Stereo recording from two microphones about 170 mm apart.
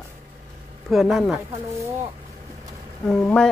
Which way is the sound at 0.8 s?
Centre (ahead or behind).